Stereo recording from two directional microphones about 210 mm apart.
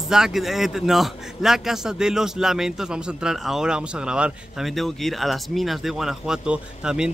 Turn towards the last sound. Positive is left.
turn(degrees=-5)  # may be behind; listen again after turning